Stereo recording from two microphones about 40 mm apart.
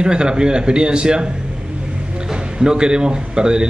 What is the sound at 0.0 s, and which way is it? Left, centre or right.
Speech, right.